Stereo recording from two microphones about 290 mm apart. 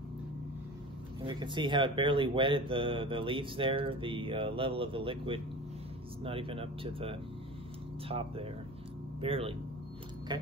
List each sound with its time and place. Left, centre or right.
1.2 s speech: centre